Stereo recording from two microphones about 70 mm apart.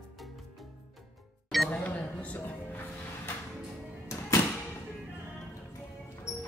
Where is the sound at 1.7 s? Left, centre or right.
Centre.